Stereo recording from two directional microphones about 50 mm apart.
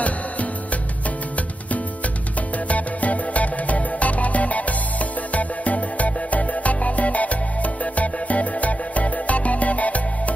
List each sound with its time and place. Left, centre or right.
2.7 s music: left